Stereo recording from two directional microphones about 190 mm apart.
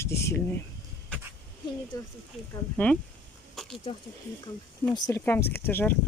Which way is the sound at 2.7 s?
5° left (ahead or behind).